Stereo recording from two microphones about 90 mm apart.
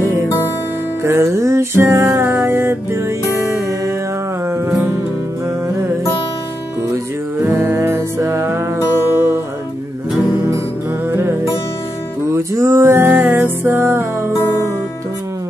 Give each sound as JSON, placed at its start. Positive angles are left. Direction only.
{"t": 1.0, "sound": "music", "side_deg": -30}
{"t": 7.5, "sound": "music", "side_deg": -25}
{"t": 11.1, "sound": "music", "side_deg": -25}
{"t": 12.5, "sound": "music", "side_deg": -35}